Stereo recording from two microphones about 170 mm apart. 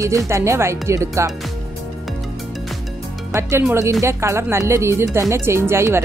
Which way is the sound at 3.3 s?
15° right (ahead or behind).